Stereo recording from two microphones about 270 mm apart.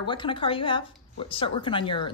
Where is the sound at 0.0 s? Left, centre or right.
Centre.